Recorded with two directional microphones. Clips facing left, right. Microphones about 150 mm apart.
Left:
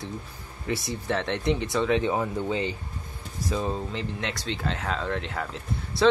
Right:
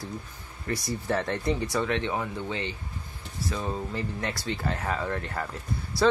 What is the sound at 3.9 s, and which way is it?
Speech, 85° left.